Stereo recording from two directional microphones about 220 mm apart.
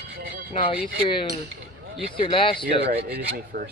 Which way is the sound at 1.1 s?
25° left (ahead or behind).